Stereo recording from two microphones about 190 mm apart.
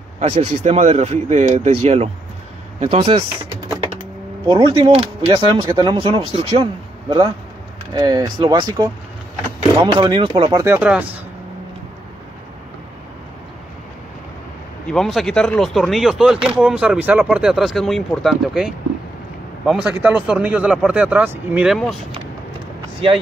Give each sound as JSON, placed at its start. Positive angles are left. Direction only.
{"t": 0.2, "sound": "speech", "side_deg": -30}
{"t": 4.5, "sound": "speech", "side_deg": -25}
{"t": 10.6, "sound": "speech", "side_deg": -10}
{"t": 14.9, "sound": "speech", "side_deg": 0}